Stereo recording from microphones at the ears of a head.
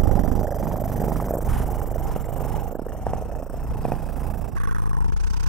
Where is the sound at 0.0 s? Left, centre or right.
Right.